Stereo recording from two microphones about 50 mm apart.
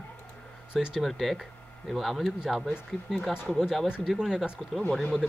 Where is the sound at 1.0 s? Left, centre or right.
Centre.